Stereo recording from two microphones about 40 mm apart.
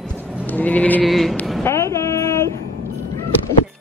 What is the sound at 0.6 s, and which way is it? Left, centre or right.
Sheep, left.